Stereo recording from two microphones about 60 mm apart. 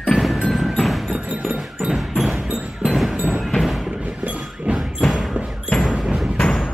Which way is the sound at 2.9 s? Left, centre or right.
Centre.